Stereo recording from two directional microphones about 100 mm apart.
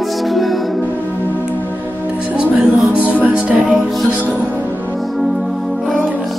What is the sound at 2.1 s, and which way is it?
Music, 10° right (ahead or behind).